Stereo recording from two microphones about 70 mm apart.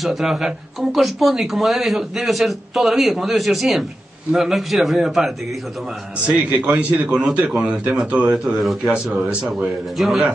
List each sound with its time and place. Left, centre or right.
0.0 s speech: centre
6.5 s a man's voice: centre
9.1 s speech: centre